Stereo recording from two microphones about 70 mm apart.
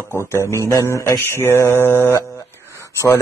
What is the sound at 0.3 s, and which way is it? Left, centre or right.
Mantra, left.